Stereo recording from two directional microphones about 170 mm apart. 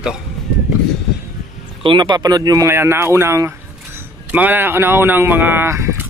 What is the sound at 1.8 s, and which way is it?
Speech, 25° right (ahead or behind).